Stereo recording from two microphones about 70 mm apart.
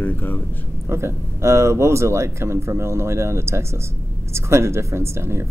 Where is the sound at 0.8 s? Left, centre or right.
Right.